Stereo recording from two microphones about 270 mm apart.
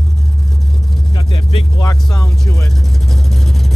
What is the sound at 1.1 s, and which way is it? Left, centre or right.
Vehicle, centre.